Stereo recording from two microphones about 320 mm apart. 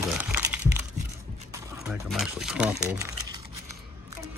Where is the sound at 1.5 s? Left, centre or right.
Centre.